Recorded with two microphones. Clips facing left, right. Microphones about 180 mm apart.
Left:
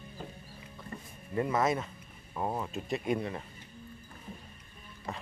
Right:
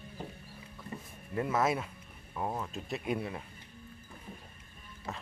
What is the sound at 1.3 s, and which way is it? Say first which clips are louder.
Speech: left 1 dB; centre (ahead or behind).